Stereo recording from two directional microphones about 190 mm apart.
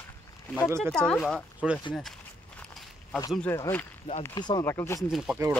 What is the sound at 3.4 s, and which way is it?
Speech, 15° left (ahead or behind).